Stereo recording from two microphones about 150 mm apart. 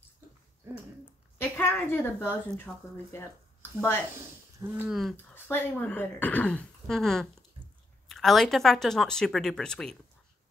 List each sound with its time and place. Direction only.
1.4 s a woman's voice: 15° left (ahead or behind)
4.6 s speech: 15° right (ahead or behind)
4.8 s speech: centre (ahead or behind)
5.1 s speech: 15° left (ahead or behind)